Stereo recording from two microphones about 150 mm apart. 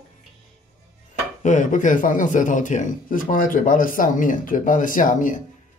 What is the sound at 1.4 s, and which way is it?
A man's voice, 55° left (ahead or behind).